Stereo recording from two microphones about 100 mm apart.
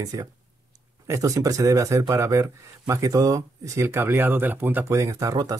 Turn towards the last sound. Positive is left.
turn(degrees=-35)  # may be behind; listen again after turning